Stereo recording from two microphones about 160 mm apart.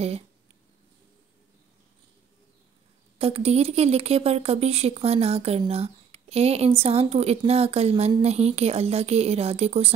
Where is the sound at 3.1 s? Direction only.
35° right (ahead or behind).